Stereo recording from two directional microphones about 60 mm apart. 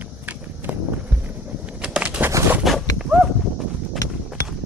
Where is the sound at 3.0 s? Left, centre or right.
Centre.